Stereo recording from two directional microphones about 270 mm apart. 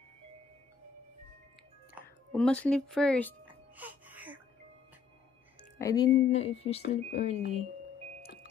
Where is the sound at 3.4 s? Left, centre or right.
Centre.